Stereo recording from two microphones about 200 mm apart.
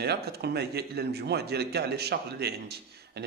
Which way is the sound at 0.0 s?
55° right (ahead or behind).